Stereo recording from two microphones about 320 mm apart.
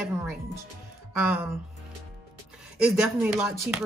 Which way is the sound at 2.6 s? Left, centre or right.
Centre.